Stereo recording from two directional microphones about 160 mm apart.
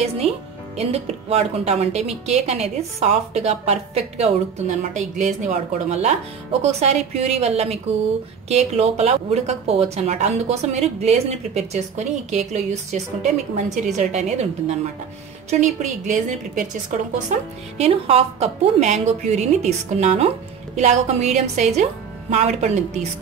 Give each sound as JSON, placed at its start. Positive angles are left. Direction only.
{"t": 0.2, "sound": "a woman's voice", "side_deg": -35}
{"t": 17.3, "sound": "a woman's voice", "side_deg": -40}